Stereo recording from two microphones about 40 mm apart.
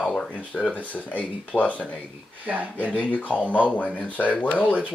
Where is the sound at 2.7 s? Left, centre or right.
Left.